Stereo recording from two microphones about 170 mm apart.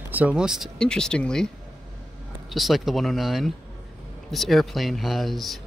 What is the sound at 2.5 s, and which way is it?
Speech, centre (ahead or behind).